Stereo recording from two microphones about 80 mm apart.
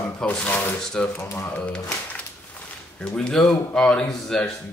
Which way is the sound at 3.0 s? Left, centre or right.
Centre.